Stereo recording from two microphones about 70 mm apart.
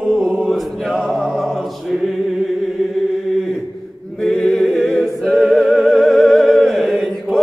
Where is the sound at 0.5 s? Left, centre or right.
Centre.